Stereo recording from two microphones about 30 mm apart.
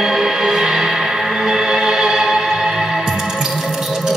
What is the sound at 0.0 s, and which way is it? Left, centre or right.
Music, centre.